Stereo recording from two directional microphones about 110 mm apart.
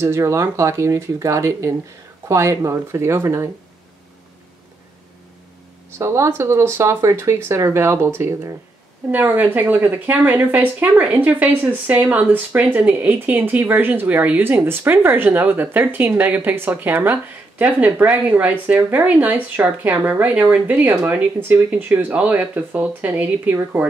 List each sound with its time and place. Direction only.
0.0 s speech: 25° right (ahead or behind)
5.9 s speech: 25° right (ahead or behind)